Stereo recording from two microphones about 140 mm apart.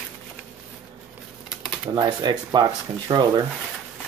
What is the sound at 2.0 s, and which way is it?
Speech, 30° right (ahead or behind).